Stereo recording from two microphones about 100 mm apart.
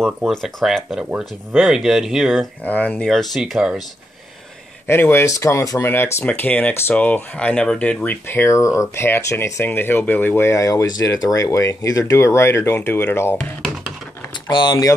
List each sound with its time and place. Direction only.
0.3 s speech: 5° left (ahead or behind)
2.6 s speech: 15° left (ahead or behind)
3.1 s speech: centre (ahead or behind)
4.8 s speech: 25° left (ahead or behind)
10.5 s speech: 35° left (ahead or behind)
14.5 s speech: 50° left (ahead or behind)